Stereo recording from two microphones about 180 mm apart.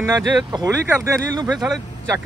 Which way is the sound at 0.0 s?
20° right (ahead or behind).